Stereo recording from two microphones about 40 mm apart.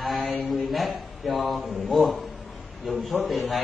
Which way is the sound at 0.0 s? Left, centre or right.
Centre.